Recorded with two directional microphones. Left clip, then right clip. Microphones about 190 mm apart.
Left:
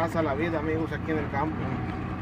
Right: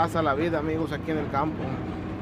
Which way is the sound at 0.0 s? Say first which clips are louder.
Right 3 dB; 20° right (ahead or behind).